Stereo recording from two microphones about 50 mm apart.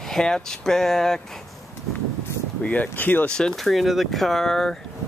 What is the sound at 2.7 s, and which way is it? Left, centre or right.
Speech, left.